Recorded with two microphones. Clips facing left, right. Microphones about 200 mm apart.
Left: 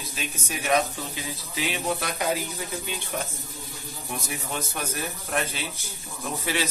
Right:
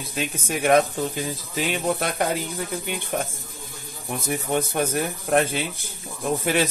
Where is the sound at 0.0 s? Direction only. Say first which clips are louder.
Right 6 dB; 55° right (ahead or behind).